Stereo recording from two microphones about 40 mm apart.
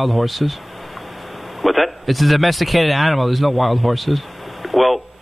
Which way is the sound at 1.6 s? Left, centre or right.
Centre.